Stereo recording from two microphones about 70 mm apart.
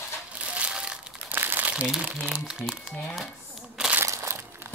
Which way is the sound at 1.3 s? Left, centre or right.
Right.